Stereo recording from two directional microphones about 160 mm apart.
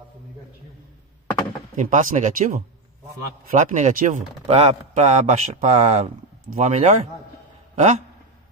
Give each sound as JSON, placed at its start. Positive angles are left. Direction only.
{"t": 1.8, "sound": "speech", "side_deg": -55}